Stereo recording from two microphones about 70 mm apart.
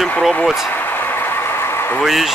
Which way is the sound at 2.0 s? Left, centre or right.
Centre.